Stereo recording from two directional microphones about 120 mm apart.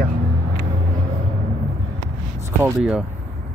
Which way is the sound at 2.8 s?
5° right (ahead or behind).